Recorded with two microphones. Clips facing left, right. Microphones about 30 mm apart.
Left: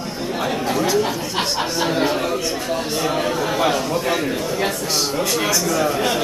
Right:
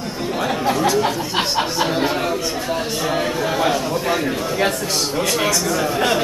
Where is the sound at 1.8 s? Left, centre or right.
Centre.